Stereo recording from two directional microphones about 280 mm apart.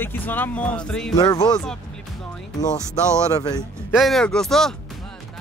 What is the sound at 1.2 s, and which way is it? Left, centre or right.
Speech, centre.